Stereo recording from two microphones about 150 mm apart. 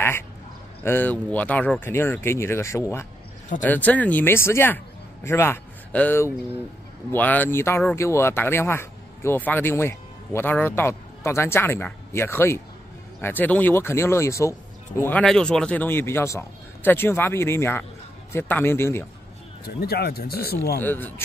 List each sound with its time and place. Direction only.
0.8 s speech: 15° left (ahead or behind)
19.6 s speech: 90° left
20.7 s speech: 15° left (ahead or behind)